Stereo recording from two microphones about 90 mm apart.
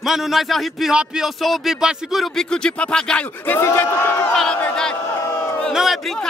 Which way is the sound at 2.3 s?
10° left (ahead or behind).